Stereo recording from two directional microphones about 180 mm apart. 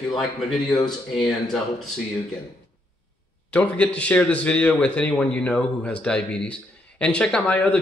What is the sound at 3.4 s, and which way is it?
A man's voice, 5° left (ahead or behind).